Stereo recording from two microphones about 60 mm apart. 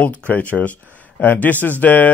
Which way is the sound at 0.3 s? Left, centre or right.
Left.